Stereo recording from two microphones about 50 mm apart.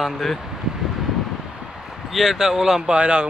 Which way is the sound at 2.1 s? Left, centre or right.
Centre.